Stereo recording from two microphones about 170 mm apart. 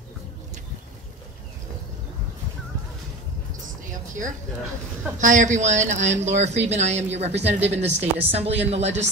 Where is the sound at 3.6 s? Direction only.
50° right (ahead or behind).